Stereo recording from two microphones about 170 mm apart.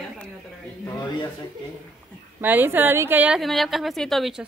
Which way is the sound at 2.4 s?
10° right (ahead or behind).